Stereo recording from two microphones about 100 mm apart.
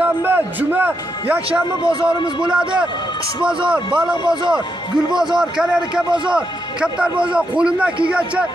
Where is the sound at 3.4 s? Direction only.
55° right (ahead or behind).